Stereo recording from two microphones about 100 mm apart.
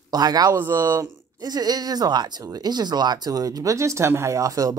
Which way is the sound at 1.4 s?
40° right (ahead or behind).